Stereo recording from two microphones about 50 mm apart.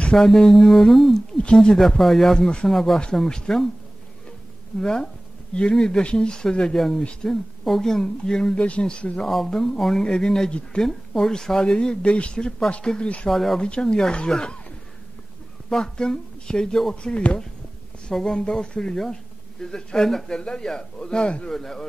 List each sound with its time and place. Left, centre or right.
0.2 s speech: centre
1.4 s speech: centre
1.8 s speech: centre
2.3 s speech: centre
2.7 s speech: centre
3.2 s speech: centre
4.7 s speech: centre
8.5 s speech: left
9.2 s speech: centre
13.3 s speech: centre
13.6 s speech: centre
15.7 s speech: centre
21.5 s speech: centre